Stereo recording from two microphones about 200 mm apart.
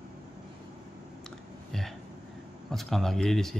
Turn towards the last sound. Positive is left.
turn(degrees=0)  # may be behind; listen again after turning